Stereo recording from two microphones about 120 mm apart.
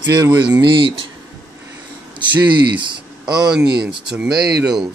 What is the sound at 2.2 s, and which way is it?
Speech, 40° right (ahead or behind).